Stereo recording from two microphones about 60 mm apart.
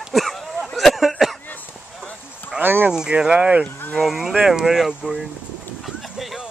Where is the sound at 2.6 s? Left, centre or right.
Right.